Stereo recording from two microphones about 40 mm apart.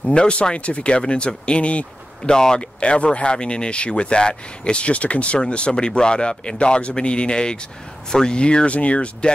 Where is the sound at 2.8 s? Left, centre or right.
Left.